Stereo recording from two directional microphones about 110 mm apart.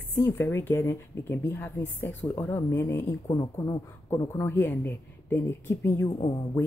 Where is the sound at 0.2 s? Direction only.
20° left (ahead or behind).